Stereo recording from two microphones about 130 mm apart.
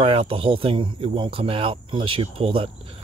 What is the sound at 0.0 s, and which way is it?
Speech, 45° right (ahead or behind).